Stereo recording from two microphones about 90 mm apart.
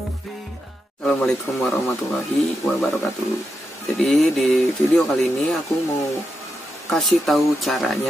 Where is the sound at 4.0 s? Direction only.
Centre (ahead or behind).